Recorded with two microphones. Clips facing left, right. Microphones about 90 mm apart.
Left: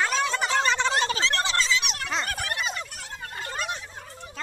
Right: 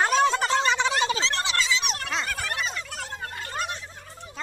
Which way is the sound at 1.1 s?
25° right (ahead or behind).